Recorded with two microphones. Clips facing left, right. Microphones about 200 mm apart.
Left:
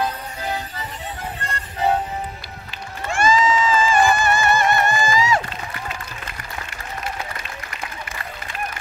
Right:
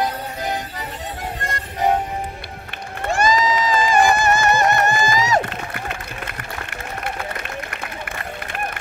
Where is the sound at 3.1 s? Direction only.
40° right (ahead or behind).